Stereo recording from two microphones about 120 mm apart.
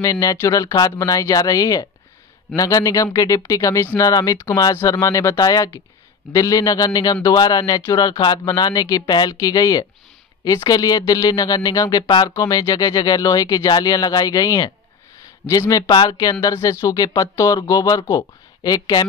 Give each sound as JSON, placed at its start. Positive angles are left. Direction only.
{"t": 0.0, "sound": "speech", "side_deg": 30}